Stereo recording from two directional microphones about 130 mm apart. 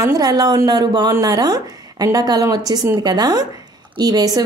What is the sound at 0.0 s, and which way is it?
Speech, 30° right (ahead or behind).